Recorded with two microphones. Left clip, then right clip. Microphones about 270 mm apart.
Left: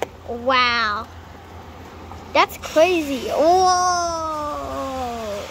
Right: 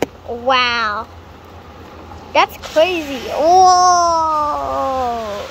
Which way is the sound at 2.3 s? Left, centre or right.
Centre.